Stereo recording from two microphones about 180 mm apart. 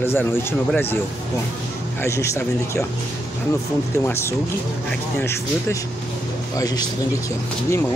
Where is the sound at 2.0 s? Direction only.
15° left (ahead or behind).